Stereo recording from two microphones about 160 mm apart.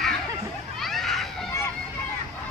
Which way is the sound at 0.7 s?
Centre (ahead or behind).